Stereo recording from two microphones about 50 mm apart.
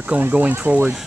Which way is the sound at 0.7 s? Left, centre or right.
Right.